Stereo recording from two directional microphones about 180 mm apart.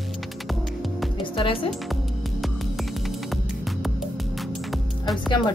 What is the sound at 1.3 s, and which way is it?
Speech, 30° left (ahead or behind).